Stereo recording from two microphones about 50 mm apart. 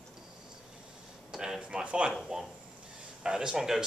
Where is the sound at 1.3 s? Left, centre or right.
Centre.